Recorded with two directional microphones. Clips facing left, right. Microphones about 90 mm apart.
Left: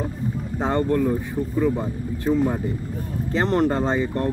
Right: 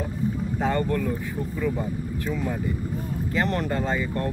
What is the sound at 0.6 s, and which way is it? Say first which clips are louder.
Speech: left 5 dB; 25° left (ahead or behind).